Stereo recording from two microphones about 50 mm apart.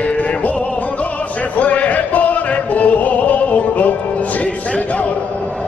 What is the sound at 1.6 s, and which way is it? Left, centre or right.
Music, left.